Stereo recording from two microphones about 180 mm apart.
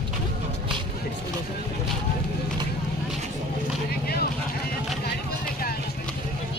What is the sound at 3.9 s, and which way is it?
Vehicle, 60° left (ahead or behind).